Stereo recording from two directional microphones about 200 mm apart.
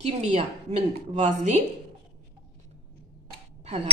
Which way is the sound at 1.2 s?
35° right (ahead or behind).